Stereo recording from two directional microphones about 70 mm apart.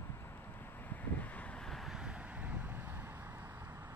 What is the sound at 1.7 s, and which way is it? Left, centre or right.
Vehicle, centre.